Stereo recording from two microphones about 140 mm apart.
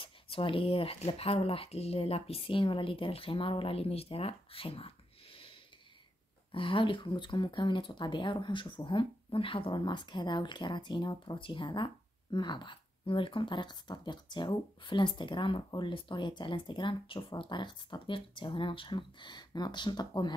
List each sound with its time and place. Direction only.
0.0 s speech: 40° left (ahead or behind)
6.5 s speech: 40° left (ahead or behind)